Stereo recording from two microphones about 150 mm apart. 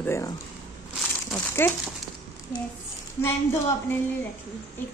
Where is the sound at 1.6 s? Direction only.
15° left (ahead or behind).